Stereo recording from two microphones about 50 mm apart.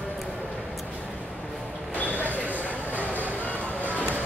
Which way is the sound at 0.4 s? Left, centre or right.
Left.